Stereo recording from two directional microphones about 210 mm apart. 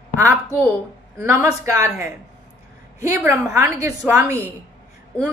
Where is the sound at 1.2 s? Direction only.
10° right (ahead or behind).